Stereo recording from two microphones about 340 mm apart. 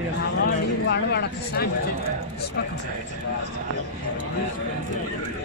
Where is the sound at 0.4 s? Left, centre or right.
Left.